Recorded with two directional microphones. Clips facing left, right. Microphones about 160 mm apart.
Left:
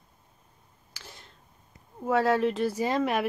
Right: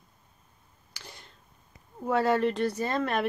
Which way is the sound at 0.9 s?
Centre (ahead or behind).